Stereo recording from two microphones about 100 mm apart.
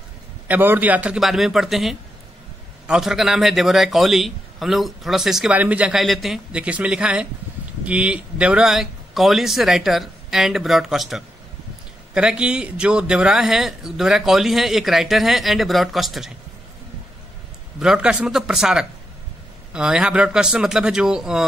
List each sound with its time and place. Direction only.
0.5 s a man's voice: 20° right (ahead or behind)
1.2 s speech: centre (ahead or behind)
5.5 s a man's voice: 15° right (ahead or behind)
5.9 s a man's voice: centre (ahead or behind)
17.7 s a man's voice: 10° right (ahead or behind)